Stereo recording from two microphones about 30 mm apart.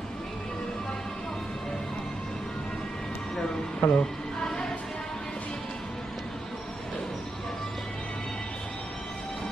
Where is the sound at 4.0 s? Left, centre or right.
Left.